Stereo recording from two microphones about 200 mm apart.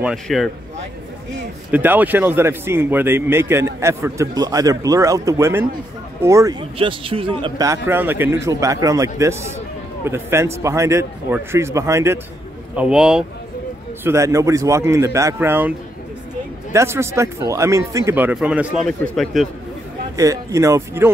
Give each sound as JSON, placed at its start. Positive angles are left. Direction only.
{"t": 0.0, "sound": "speech", "side_deg": 0}
{"t": 1.7, "sound": "speech", "side_deg": -10}
{"t": 6.8, "sound": "speech", "side_deg": -25}
{"t": 14.0, "sound": "speech", "side_deg": -15}
{"t": 16.7, "sound": "speech", "side_deg": -15}
{"t": 20.2, "sound": "speech", "side_deg": -15}